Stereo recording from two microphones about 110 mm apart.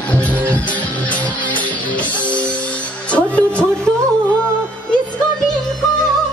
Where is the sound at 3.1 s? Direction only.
10° left (ahead or behind).